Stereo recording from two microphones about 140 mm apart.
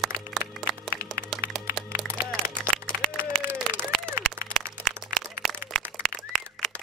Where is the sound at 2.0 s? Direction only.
5° left (ahead or behind).